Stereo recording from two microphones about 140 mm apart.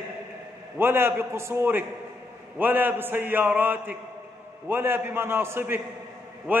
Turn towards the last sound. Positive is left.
turn(degrees=-15)  # may be behind; listen again after turning